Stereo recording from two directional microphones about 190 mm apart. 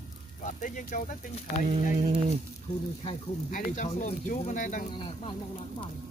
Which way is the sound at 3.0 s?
40° left (ahead or behind).